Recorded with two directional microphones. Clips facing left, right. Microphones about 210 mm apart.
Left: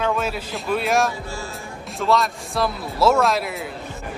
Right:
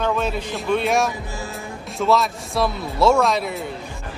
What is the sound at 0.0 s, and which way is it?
A man's voice, 5° left (ahead or behind).